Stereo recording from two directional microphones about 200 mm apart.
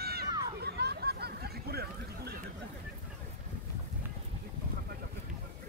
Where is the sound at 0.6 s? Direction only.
55° right (ahead or behind).